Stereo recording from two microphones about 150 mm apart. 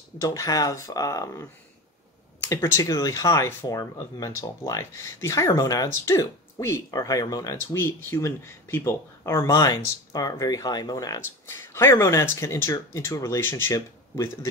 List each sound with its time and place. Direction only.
0.2 s speech: 20° left (ahead or behind)